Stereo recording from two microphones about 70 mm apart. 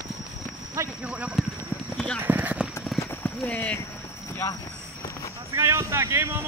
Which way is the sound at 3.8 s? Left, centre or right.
Left.